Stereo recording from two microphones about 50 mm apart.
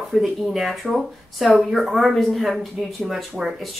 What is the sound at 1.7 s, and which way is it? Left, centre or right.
Speech, centre.